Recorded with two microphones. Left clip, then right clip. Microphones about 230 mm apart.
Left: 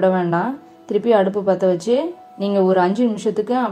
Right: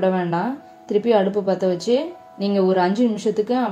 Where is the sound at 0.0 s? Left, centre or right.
Centre.